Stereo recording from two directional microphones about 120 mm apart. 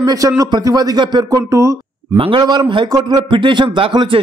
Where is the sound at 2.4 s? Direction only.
35° right (ahead or behind).